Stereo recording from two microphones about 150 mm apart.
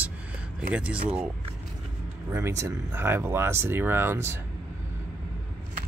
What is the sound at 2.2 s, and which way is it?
Speech, 15° right (ahead or behind).